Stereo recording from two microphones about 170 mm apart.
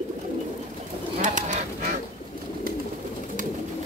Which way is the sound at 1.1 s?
45° right (ahead or behind).